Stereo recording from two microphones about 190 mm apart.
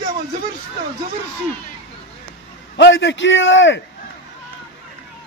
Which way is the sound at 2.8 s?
70° left (ahead or behind).